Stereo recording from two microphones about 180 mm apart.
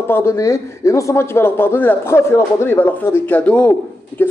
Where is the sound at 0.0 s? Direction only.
15° left (ahead or behind).